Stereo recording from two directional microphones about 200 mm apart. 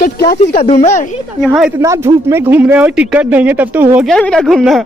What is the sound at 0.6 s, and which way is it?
Speech, 30° left (ahead or behind).